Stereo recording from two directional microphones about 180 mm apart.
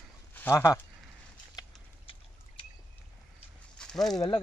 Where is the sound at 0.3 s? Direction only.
10° left (ahead or behind).